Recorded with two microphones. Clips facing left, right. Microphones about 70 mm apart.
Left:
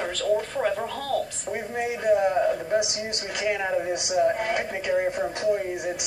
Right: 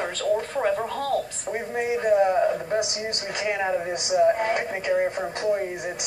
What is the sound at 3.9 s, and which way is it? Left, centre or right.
Speech, centre.